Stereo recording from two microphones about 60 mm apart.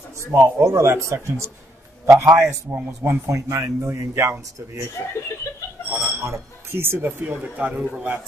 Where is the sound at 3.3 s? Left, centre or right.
Right.